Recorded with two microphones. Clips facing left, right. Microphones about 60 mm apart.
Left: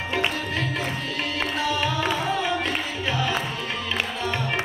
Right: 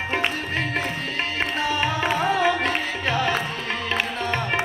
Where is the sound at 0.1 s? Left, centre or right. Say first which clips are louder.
Even; right.